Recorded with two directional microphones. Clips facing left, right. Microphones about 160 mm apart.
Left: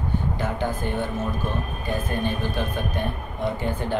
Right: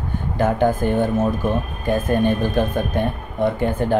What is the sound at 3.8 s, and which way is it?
Speech, 50° right (ahead or behind).